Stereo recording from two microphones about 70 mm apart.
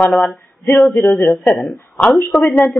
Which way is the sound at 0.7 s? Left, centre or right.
Left.